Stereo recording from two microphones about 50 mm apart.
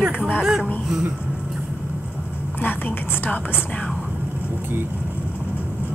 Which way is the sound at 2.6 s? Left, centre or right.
Left.